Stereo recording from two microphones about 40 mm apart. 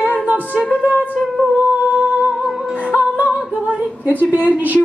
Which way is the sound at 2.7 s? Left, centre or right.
Right.